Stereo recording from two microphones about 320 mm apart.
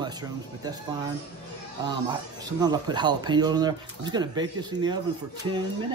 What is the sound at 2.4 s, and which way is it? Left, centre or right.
Speech, centre.